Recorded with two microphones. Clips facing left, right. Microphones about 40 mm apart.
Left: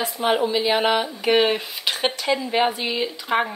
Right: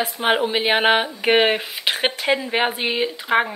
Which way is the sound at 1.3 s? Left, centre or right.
Right.